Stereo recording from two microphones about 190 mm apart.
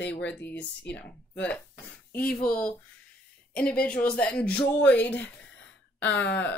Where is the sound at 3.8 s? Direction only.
5° left (ahead or behind).